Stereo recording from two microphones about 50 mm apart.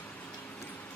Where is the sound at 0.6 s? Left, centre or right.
Left.